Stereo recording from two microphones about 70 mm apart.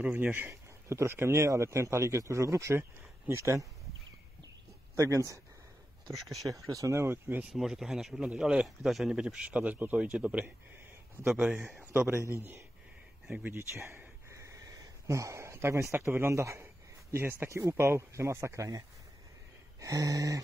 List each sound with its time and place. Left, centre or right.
0.0 s speech: right
5.0 s speech: right
6.0 s speech: centre
6.6 s speech: right
7.5 s speech: centre
8.6 s speech: centre
9.6 s speech: right
11.8 s a sound: centre
12.4 s speech: right
13.3 s a sound: right
16.1 s speech: right
17.1 s speech: right
17.5 s speech: right
19.8 s a sound: right